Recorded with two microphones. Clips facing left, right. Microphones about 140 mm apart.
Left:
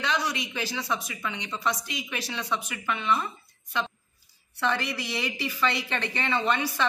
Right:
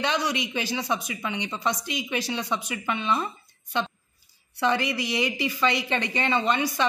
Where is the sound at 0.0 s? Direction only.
20° right (ahead or behind).